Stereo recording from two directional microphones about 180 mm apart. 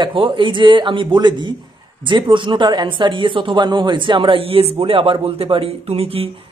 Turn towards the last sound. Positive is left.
turn(degrees=-30)  # may be behind; listen again after turning